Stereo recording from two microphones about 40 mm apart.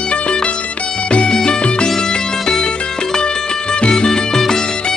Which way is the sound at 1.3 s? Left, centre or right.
Centre.